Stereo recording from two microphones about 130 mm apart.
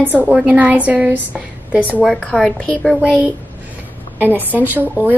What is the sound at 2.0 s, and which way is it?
Speech, 10° left (ahead or behind).